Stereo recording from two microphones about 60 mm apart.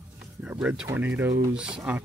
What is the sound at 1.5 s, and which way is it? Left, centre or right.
Speech, centre.